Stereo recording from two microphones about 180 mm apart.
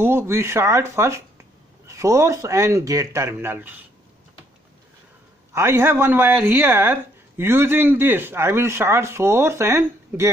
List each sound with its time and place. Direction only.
0.0 s speech: 15° right (ahead or behind)
5.5 s speech: 15° right (ahead or behind)